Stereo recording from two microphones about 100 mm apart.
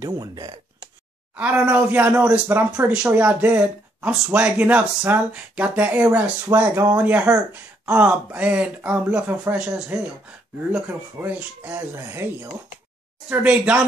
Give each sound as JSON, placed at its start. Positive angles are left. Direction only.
{"t": 0.0, "sound": "speech", "side_deg": -45}
{"t": 1.3, "sound": "speech", "side_deg": -15}
{"t": 6.7, "sound": "speech", "side_deg": -30}
{"t": 7.0, "sound": "speech", "side_deg": -15}
{"t": 11.3, "sound": "speech", "side_deg": -20}
{"t": 13.3, "sound": "speech", "side_deg": -10}